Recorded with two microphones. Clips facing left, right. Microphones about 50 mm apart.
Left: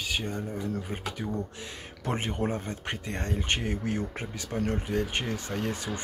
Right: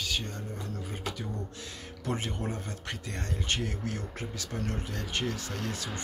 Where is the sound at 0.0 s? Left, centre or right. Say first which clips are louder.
Left 3 dB; centre.